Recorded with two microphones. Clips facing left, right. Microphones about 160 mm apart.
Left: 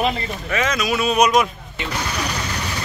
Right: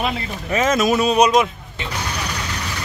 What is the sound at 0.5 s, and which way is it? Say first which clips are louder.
Speech: right 5 dB; 45° right (ahead or behind).